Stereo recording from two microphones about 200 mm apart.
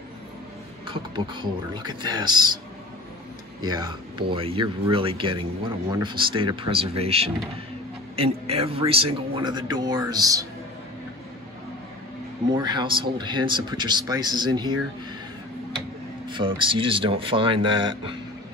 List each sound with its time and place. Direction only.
0.8 s speech: 25° right (ahead or behind)
3.6 s speech: 20° right (ahead or behind)
12.5 s speech: 20° right (ahead or behind)
16.3 s speech: 25° right (ahead or behind)